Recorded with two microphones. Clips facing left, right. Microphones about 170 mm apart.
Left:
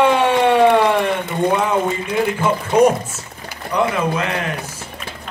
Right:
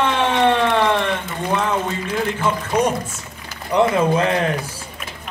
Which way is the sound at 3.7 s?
30° right (ahead or behind).